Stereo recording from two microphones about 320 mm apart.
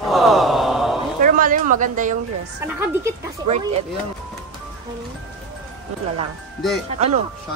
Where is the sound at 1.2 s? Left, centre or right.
Right.